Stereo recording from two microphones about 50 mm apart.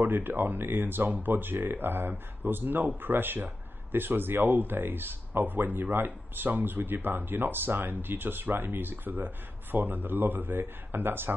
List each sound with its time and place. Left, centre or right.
0.0 s speech: right